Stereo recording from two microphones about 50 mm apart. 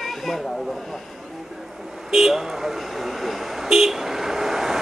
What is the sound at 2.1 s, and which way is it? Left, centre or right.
Vehicle, centre.